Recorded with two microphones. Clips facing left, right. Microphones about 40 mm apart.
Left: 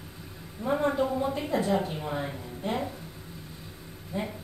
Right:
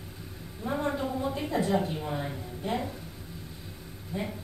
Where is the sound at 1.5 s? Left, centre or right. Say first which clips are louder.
Right 1 dB; left.